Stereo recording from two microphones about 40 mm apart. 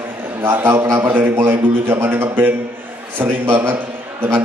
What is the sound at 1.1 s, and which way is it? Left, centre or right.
A man's voice, right.